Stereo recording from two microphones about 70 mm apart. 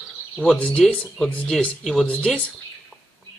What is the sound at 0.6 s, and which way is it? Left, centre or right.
Speech, centre.